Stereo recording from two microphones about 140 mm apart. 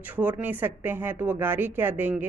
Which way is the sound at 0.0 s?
10° right (ahead or behind).